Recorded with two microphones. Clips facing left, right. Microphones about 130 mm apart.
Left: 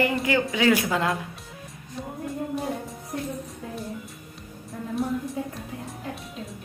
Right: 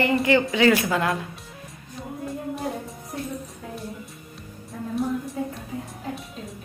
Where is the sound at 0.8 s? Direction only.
15° left (ahead or behind).